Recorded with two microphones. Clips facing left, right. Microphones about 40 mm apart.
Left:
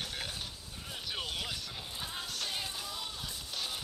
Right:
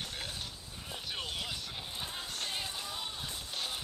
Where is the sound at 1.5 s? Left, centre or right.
Centre.